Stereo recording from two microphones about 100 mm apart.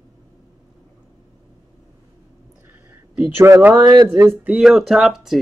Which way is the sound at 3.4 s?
20° right (ahead or behind).